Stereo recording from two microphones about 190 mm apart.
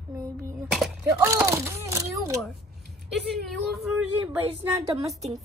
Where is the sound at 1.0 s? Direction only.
15° right (ahead or behind).